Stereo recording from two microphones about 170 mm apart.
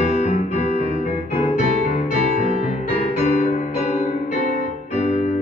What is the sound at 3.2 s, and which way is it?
Music, 45° left (ahead or behind).